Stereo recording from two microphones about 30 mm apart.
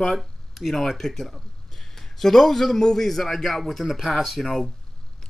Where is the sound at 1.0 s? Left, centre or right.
Centre.